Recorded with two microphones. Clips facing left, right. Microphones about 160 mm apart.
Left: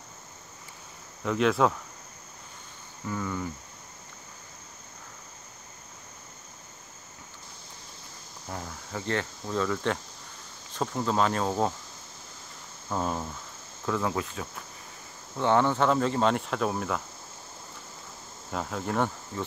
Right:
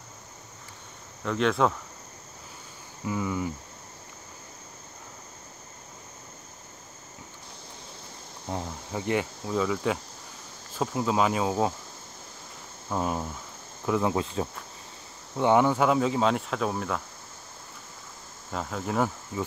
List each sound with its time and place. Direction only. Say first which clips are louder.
1.2 s speech: even; 5° left (ahead or behind)
3.1 s cricket: right 3 dB; 10° right (ahead or behind)
8.5 s cricket: right 5 dB; 20° right (ahead or behind)
12.9 s cricket: right 1 dB; 10° right (ahead or behind)
15.3 s speech: right 2 dB; 15° right (ahead or behind)
18.5 s speech: even; centre (ahead or behind)